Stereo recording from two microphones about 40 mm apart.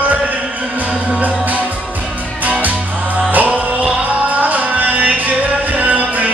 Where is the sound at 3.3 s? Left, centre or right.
Right.